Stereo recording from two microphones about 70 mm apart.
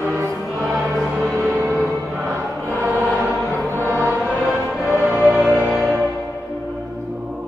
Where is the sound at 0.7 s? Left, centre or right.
Centre.